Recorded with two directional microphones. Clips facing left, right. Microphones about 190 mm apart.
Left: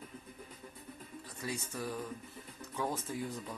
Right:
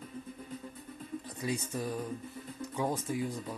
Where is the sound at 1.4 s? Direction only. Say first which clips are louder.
Right 4 dB; 20° right (ahead or behind).